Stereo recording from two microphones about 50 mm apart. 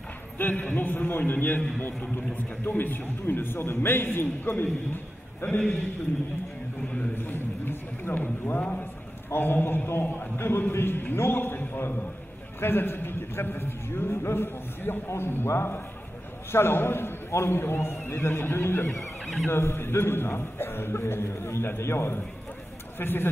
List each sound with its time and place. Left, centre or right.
0.4 s a man's voice: left
5.4 s a man's voice: left
7.2 s a man's voice: left
10.3 s a man's voice: left
22.9 s a man's voice: left